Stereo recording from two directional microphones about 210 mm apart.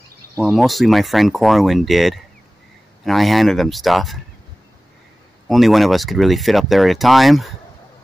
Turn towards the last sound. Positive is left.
turn(degrees=0)  # may be behind; listen again after turning